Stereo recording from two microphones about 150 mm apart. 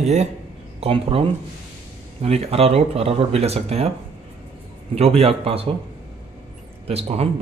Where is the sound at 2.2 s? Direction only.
45° right (ahead or behind).